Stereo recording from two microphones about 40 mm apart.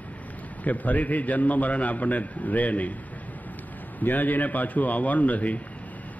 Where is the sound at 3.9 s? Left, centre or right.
Left.